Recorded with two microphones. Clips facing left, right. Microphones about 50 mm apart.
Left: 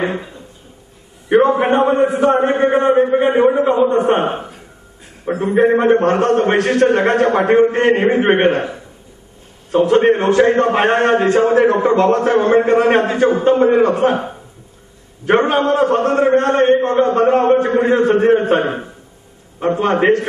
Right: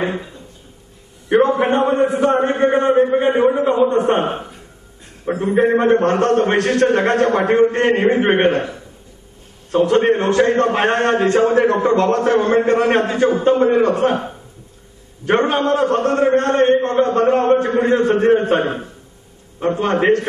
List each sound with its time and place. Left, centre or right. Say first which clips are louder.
0.0 s a man's voice: left 2 dB; centre